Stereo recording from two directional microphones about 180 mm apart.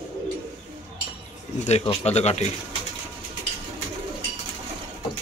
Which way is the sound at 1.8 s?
35° left (ahead or behind).